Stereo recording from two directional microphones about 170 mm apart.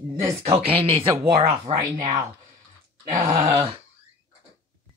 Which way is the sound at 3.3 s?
40° right (ahead or behind).